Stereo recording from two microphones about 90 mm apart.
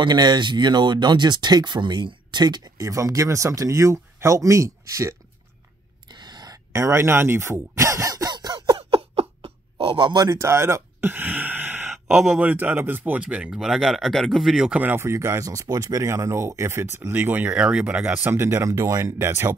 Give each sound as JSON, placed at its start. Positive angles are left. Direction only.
{"t": 0.0, "sound": "speech", "side_deg": -55}
{"t": 6.0, "sound": "gasp", "side_deg": -55}
{"t": 6.7, "sound": "a sound", "side_deg": -30}
{"t": 8.7, "sound": "a sound", "side_deg": -85}
{"t": 10.1, "sound": "speech", "side_deg": -40}
{"t": 11.8, "sound": "a sound", "side_deg": -5}
{"t": 12.4, "sound": "speech", "side_deg": -20}
{"t": 14.8, "sound": "speech", "side_deg": -25}
{"t": 18.2, "sound": "speech", "side_deg": -25}